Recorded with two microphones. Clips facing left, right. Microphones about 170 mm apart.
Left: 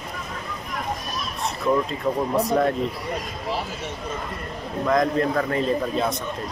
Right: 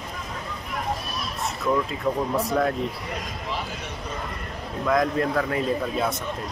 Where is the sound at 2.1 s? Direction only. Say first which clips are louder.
Left 3 dB; 5° left (ahead or behind).